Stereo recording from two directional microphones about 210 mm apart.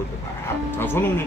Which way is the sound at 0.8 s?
10° left (ahead or behind).